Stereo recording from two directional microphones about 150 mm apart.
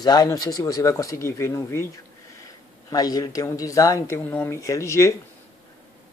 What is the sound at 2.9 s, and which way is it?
Speech, 25° left (ahead or behind).